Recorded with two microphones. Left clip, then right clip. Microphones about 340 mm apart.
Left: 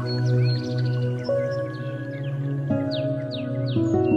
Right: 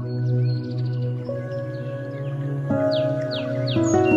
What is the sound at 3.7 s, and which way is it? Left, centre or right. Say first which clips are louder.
Music: right 3 dB; right.